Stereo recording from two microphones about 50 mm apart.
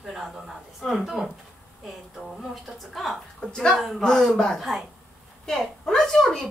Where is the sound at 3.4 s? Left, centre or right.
Centre.